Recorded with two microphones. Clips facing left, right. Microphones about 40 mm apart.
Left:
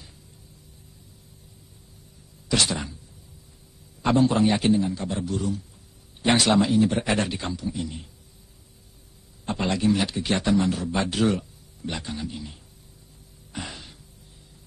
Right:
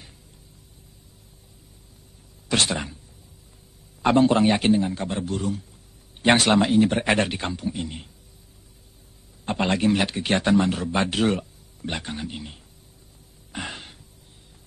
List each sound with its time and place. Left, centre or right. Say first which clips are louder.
2.4 s throat clearing: right 1 dB; right
4.0 s speech: right 2 dB; right
9.5 s speech: right 2 dB; right
13.5 s a sound: right 3 dB; right